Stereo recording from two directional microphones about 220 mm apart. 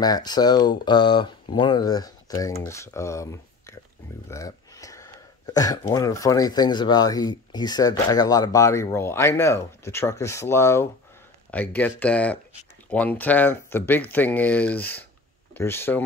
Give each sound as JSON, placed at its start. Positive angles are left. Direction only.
{"t": 0.0, "sound": "speech", "side_deg": 20}